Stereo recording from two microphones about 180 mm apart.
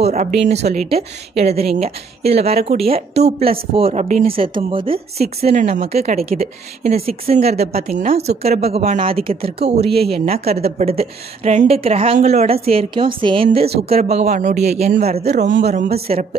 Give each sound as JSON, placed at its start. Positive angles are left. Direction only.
{"t": 0.0, "sound": "a woman's voice", "side_deg": -40}